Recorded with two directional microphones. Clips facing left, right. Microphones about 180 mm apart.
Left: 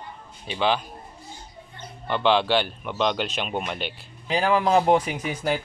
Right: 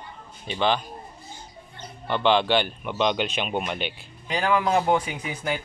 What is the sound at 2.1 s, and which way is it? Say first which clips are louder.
Speech: even; centre (ahead or behind).